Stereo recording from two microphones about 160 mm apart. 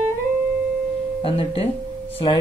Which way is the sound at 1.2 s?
35° left (ahead or behind).